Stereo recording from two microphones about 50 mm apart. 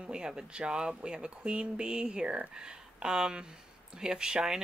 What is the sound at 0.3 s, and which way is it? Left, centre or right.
Speech, centre.